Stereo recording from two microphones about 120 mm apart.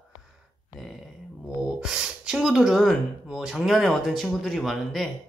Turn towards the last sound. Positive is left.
turn(degrees=0)  # may be behind; listen again after turning